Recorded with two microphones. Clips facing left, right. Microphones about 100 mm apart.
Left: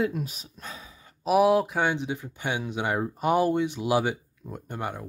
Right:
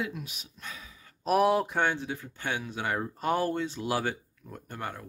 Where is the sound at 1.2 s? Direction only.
Centre (ahead or behind).